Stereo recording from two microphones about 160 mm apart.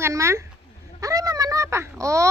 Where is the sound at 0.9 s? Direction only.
20° right (ahead or behind).